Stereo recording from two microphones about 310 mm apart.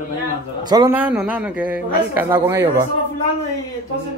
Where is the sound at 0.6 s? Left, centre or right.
Centre.